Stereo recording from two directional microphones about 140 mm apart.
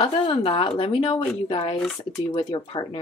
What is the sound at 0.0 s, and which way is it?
Speech, 40° left (ahead or behind).